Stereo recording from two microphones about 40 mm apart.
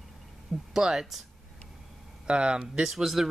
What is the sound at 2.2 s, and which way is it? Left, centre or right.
Speech, right.